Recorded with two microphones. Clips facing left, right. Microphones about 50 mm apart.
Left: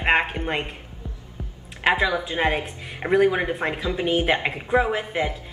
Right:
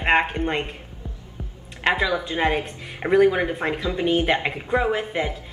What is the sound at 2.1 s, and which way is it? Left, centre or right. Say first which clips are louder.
A woman's voice: right 1 dB; centre.